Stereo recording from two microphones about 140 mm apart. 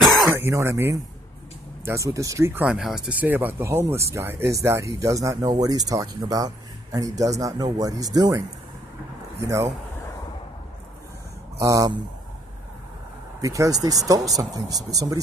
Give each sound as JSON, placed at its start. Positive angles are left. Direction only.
{"t": 0.3, "sound": "speech", "side_deg": -20}
{"t": 2.7, "sound": "speech", "side_deg": -5}
{"t": 11.5, "sound": "speech", "side_deg": -25}
{"t": 13.4, "sound": "speech", "side_deg": -25}